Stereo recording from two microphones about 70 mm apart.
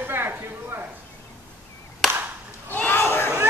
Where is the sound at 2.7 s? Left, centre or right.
Left.